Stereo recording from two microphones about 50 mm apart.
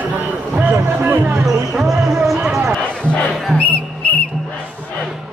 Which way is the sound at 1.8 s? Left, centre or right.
Centre.